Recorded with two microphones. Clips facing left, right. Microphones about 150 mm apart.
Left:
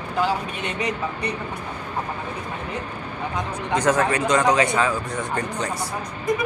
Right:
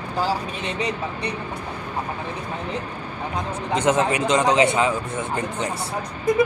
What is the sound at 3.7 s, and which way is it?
Speech, 25° right (ahead or behind).